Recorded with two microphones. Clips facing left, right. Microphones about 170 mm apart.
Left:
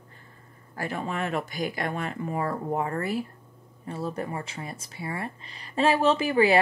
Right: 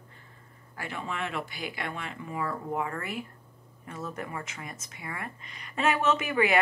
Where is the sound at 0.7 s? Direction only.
40° left (ahead or behind).